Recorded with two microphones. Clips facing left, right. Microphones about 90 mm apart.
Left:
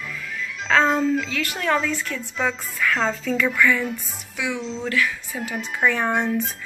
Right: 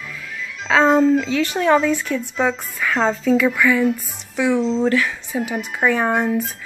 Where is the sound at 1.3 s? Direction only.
25° right (ahead or behind).